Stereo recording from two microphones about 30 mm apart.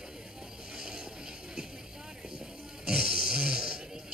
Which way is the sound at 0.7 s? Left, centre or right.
Right.